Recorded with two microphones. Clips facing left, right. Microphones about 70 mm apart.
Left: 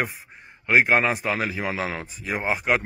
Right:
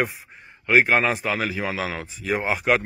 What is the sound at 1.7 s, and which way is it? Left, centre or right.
Speech, left.